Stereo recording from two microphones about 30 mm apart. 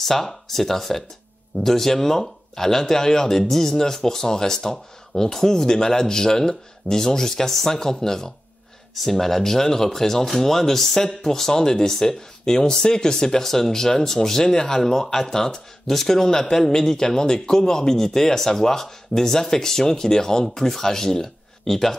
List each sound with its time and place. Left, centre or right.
0.0 s speech: centre
9.0 s speech: centre